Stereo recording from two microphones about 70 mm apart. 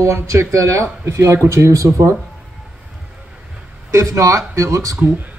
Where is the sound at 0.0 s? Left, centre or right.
Right.